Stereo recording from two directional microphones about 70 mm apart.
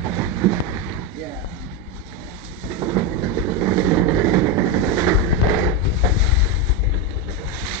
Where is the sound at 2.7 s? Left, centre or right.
Right.